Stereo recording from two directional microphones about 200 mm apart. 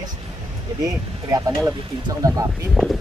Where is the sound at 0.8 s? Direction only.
20° right (ahead or behind).